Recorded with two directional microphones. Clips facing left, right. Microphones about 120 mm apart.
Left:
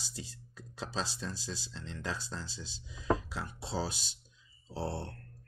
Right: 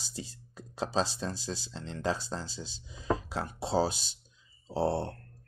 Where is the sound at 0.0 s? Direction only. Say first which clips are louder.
Right 4 dB; 30° right (ahead or behind).